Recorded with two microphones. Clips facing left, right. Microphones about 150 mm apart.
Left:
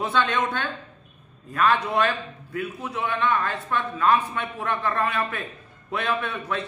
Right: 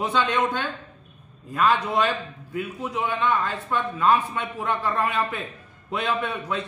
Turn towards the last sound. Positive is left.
turn(degrees=-15)  # may be behind; listen again after turning